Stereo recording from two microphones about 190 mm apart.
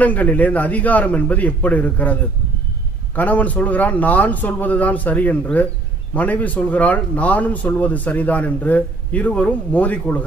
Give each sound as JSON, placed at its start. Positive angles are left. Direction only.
{"t": 0.0, "sound": "a man's voice", "side_deg": 10}
{"t": 3.2, "sound": "a man's voice", "side_deg": 10}